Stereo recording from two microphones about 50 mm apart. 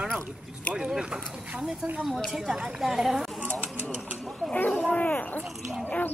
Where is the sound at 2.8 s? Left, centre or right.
Centre.